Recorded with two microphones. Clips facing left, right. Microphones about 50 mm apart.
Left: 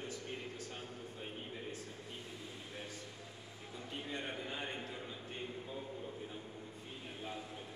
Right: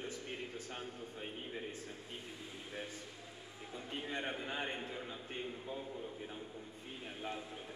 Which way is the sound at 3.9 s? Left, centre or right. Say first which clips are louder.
Right 2 dB; right.